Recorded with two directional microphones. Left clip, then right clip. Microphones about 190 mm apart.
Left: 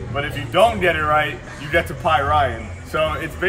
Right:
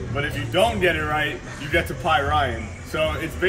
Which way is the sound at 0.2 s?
40° left (ahead or behind).